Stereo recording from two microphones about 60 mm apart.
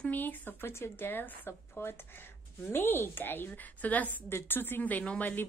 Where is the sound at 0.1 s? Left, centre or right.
Left.